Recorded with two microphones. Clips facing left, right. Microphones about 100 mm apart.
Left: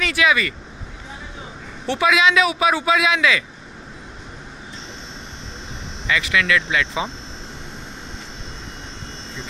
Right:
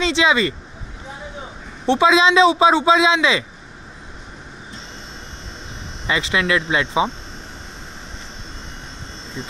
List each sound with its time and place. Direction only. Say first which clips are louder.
0.0 s a man's voice: right 2 dB; 25° right (ahead or behind)
1.9 s a man's voice: right 3 dB; 25° right (ahead or behind)
6.0 s a man's voice: even; 30° right (ahead or behind)